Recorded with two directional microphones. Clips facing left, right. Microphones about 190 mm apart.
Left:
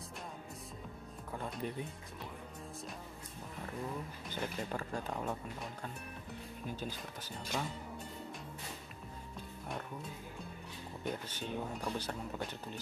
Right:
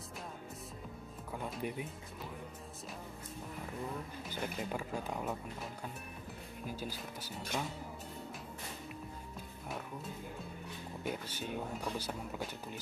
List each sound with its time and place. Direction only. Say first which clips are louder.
1.3 s music: right 1 dB; 5° right (ahead or behind)
4.3 s speech: even; 10° right (ahead or behind)
6.8 s speech: even; 10° right (ahead or behind)
11.1 s speech: even; 10° right (ahead or behind)